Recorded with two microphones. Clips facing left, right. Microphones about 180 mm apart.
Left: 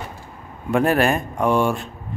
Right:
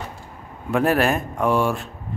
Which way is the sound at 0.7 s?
Centre (ahead or behind).